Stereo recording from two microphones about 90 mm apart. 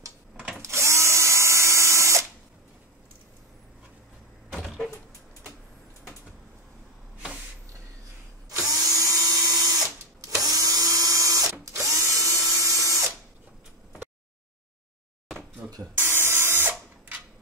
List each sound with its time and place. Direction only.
0.6 s drill: 30° right (ahead or behind)
8.6 s dental drill: 40° right (ahead or behind)
10.2 s printer: 40° right (ahead or behind)
11.6 s drill: 35° right (ahead or behind)
15.6 s a sound: 20° right (ahead or behind)